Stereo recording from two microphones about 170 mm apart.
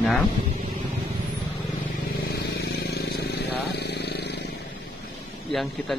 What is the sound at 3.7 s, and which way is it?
Motorcycle, 75° left (ahead or behind).